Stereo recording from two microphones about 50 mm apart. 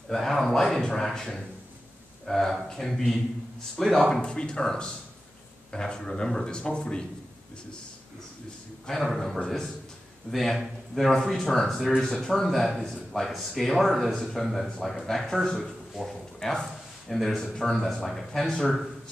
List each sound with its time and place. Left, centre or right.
0.1 s a man's voice: centre
4.1 s speech: centre
8.8 s a man's voice: centre